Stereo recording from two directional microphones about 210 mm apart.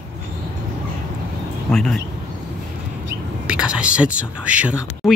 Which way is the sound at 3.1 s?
50° right (ahead or behind).